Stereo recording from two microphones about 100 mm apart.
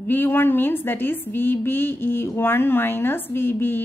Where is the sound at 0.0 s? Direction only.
20° left (ahead or behind).